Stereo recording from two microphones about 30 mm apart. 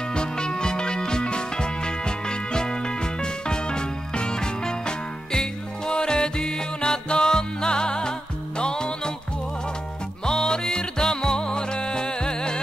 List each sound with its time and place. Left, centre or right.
0.1 s music: left
10.2 s music: left